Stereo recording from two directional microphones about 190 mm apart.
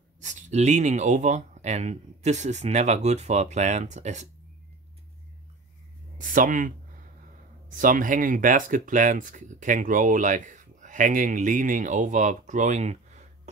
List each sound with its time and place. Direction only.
0.2 s speech: 40° right (ahead or behind)
6.1 s speech: 45° right (ahead or behind)
7.7 s speech: 45° right (ahead or behind)